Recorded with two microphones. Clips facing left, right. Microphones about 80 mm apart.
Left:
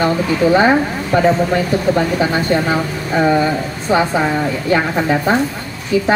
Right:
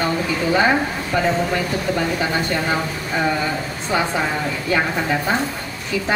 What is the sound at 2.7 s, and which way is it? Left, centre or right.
A woman's voice, centre.